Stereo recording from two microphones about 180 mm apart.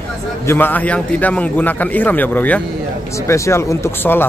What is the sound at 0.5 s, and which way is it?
Speech, 10° left (ahead or behind).